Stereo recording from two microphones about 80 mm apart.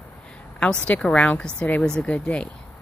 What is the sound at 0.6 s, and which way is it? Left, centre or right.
Speech, centre.